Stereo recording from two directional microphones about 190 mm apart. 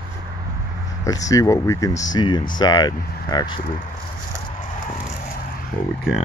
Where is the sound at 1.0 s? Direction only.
20° left (ahead or behind).